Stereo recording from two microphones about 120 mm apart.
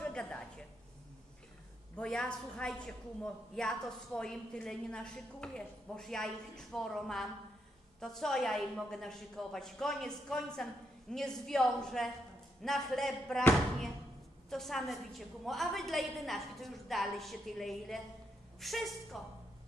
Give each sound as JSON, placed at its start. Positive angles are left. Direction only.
{"t": 0.0, "sound": "a sound", "side_deg": 10}
{"t": 2.0, "sound": "a man's voice", "side_deg": 5}
{"t": 14.5, "sound": "a man's voice", "side_deg": 0}